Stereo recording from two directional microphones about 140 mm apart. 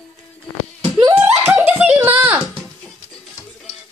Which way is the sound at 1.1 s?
10° right (ahead or behind).